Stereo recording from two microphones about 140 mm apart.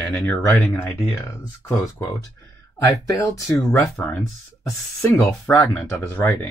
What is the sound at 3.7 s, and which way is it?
Speech, 10° left (ahead or behind).